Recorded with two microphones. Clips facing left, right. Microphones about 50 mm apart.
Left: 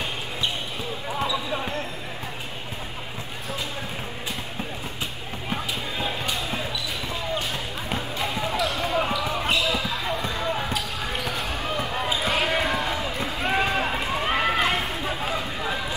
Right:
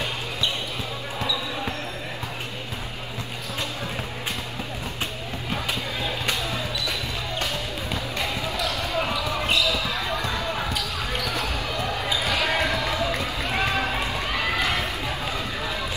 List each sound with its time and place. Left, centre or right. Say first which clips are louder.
6.8 s basketball bounce: right 1 dB; right
7.9 s basketball bounce: left 1 dB; left
9.8 s basketball bounce: right 1 dB; right
10.4 s basketball bounce: left 1 dB; left
11.3 s basketball bounce: right 2 dB; right
11.6 s basketball bounce: left 1 dB; left
12.6 s run: right 1 dB; left